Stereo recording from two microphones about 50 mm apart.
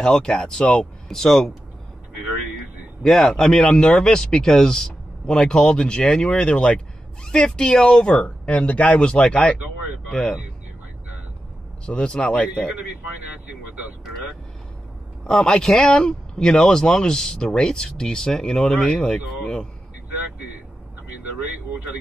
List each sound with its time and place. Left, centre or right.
0.0 s speech: centre
3.0 s speech: centre
11.8 s speech: centre
15.2 s speech: centre